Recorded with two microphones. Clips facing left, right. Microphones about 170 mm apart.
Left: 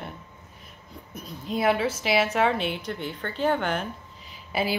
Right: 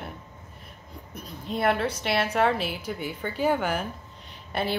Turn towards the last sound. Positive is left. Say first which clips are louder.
# left 1 dB
turn(degrees=5)  # may be behind; listen again after turning